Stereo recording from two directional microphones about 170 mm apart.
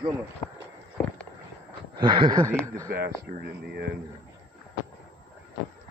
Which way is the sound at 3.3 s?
55° right (ahead or behind).